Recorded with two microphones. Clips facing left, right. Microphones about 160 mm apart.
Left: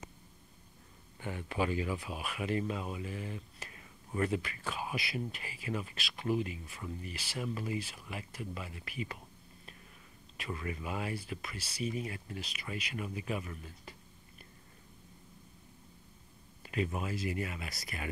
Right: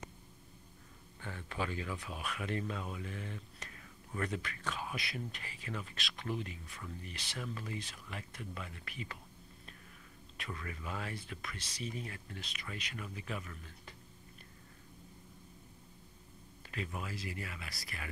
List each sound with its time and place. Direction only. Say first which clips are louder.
1.2 s speech: left 6 dB; 15° left (ahead or behind)
10.3 s speech: left 5 dB; 5° left (ahead or behind)
16.7 s speech: left 7 dB; 20° left (ahead or behind)